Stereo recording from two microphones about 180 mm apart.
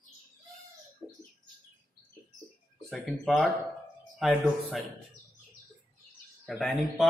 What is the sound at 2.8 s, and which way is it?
Speech, 5° left (ahead or behind).